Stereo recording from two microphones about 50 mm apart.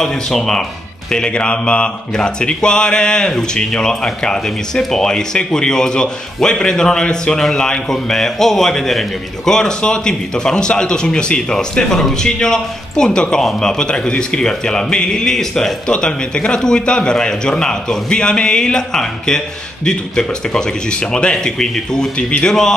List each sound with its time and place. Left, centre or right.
0.0 s speech: centre